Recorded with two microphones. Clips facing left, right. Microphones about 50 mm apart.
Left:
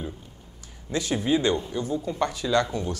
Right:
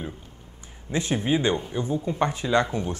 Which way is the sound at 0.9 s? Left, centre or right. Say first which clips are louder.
Even; right.